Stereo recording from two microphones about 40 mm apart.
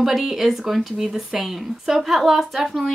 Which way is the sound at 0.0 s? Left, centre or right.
Centre.